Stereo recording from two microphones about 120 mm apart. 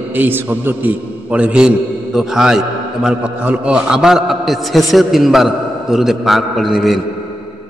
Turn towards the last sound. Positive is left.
turn(degrees=0)  # may be behind; listen again after turning